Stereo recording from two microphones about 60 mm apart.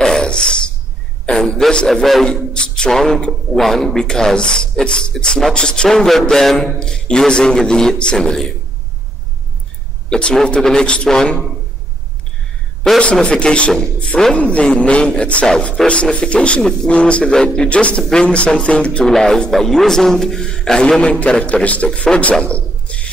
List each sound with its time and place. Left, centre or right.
0.0 s a sound: centre
1.3 s a man's voice: centre
1.9 s a man's voice: centre
2.2 s speech: centre
10.0 s speech: centre
13.0 s speech: centre
19.0 s speech: centre